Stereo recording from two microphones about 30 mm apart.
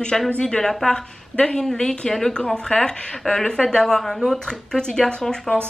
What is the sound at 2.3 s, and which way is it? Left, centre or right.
A woman's voice, left.